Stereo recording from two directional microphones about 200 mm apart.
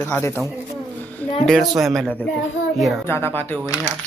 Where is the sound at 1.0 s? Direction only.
10° left (ahead or behind).